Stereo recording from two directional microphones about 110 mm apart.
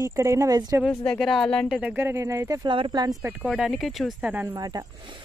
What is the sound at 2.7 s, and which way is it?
Speech, 45° right (ahead or behind).